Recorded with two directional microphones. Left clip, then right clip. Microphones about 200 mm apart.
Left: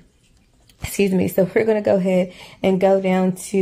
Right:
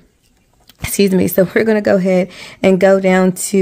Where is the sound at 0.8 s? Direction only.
35° right (ahead or behind).